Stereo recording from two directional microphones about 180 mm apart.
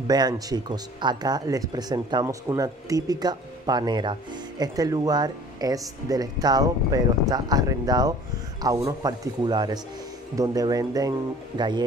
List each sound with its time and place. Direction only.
0.0 s speech: 20° right (ahead or behind)